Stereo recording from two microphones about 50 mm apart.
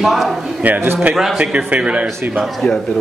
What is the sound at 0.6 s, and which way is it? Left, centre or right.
A man's voice, right.